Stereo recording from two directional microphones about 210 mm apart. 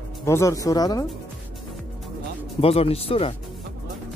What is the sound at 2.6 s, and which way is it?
Speech, 30° left (ahead or behind).